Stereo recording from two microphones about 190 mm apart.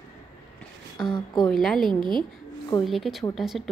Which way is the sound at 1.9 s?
25° right (ahead or behind).